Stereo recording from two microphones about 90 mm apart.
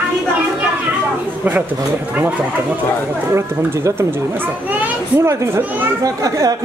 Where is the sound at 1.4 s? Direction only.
20° right (ahead or behind).